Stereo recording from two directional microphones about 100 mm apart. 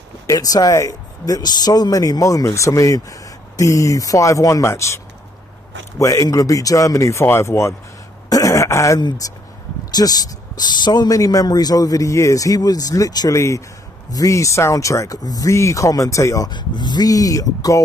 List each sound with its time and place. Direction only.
0.3 s speech: 40° left (ahead or behind)
8.3 s throat clearing: 35° left (ahead or behind)
9.2 s speech: 35° left (ahead or behind)
16.4 s speech: 50° left (ahead or behind)